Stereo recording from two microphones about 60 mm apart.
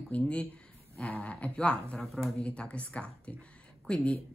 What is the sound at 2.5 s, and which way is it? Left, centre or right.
Speech, left.